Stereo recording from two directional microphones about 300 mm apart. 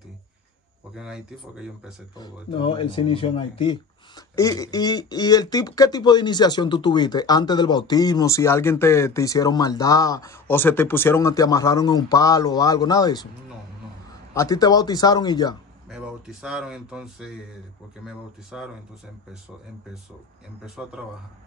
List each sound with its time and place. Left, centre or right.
0.9 s speech: centre
2.1 s speech: centre
14.3 s speech: centre
15.9 s speech: centre
20.6 s speech: centre